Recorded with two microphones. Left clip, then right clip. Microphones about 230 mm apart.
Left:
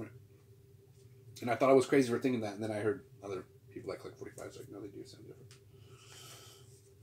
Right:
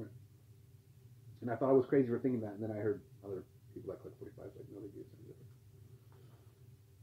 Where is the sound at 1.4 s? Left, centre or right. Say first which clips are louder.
Left 4 dB; left.